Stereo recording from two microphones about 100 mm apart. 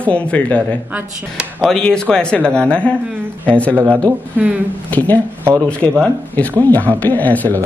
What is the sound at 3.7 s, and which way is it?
Speech, 20° right (ahead or behind).